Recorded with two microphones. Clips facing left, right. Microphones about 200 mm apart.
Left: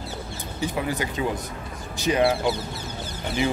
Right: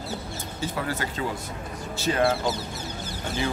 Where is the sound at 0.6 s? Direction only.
15° left (ahead or behind).